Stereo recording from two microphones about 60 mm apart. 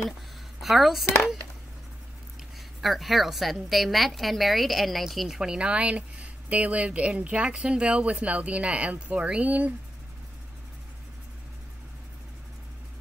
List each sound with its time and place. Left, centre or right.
0.6 s speech: centre
2.8 s a woman's voice: centre; by 9.8 s right